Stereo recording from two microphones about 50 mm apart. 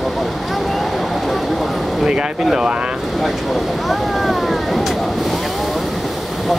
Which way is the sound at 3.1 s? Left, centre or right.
Centre.